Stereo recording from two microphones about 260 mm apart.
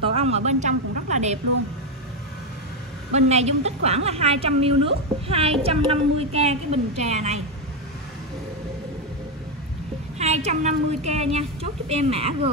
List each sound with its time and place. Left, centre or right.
0.0 s a woman's voice: right
3.1 s a woman's voice: right
10.1 s a woman's voice: right